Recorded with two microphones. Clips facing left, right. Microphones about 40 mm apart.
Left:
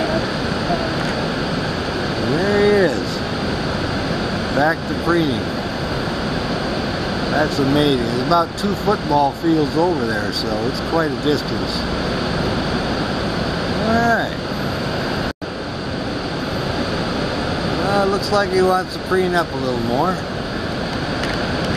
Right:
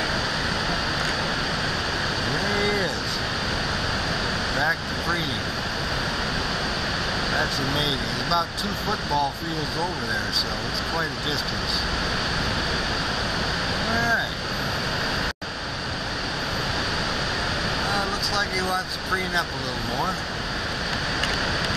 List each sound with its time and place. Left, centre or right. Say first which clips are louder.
2.2 s vehicle: left 11 dB; left
4.6 s speech: left 9 dB; left
7.3 s speech: left 11 dB; centre
13.9 s speech: left 6 dB; centre
17.8 s vehicle: left 8 dB; centre